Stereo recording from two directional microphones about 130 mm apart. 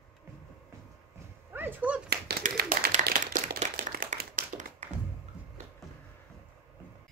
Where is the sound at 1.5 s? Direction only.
15° right (ahead or behind).